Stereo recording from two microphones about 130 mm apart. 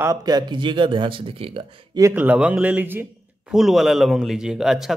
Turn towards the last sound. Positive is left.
turn(degrees=-5)  # may be behind; listen again after turning